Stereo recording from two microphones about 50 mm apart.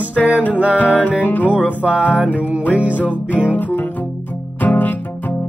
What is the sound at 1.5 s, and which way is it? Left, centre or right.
Music, right.